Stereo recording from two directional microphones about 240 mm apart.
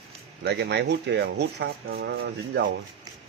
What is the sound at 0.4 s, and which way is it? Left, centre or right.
Speech, right.